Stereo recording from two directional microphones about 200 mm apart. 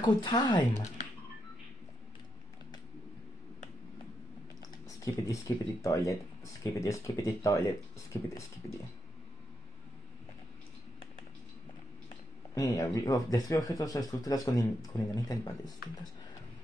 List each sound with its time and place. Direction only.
0.0 s speech: 20° left (ahead or behind)
4.6 s speech: 15° left (ahead or behind)
12.5 s speech: 15° left (ahead or behind)